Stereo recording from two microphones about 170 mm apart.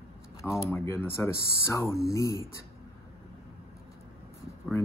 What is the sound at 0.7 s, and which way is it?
Speech, 15° left (ahead or behind).